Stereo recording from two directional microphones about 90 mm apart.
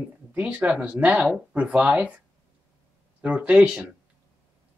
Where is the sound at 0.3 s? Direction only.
15° right (ahead or behind).